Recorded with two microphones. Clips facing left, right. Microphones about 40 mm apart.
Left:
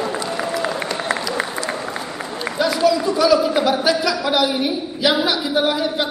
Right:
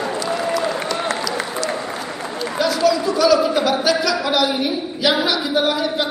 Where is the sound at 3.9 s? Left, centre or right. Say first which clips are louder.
Even; centre.